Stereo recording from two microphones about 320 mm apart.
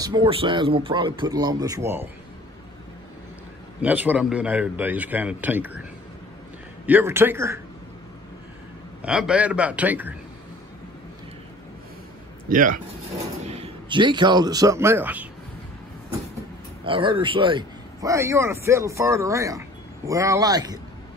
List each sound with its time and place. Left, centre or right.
0.0 s a man's voice: centre
3.8 s a man's voice: centre
6.9 s a man's voice: centre
9.0 s a man's voice: centre
12.4 s speech: right; by 15.2 s centre
16.8 s a man's voice: centre